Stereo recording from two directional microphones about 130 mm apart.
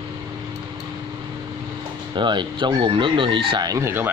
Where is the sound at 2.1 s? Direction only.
35° right (ahead or behind); by 4.1 s 20° right (ahead or behind).